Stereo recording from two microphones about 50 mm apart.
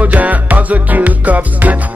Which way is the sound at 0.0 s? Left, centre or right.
Right.